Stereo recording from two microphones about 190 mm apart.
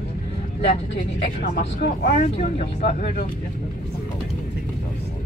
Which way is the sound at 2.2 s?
35° left (ahead or behind).